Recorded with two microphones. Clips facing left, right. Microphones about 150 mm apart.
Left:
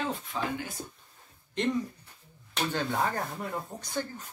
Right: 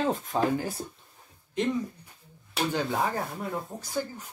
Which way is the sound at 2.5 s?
10° right (ahead or behind).